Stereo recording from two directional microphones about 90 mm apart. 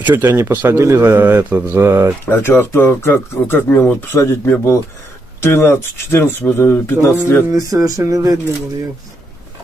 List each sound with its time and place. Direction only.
0.0 s a man's voice: 25° right (ahead or behind)
2.2 s speech: 25° left (ahead or behind)
7.5 s a sound: 40° right (ahead or behind)